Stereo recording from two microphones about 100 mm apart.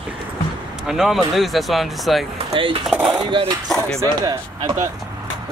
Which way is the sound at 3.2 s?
55° right (ahead or behind).